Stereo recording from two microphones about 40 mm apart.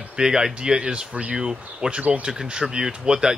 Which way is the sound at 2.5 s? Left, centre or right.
Centre.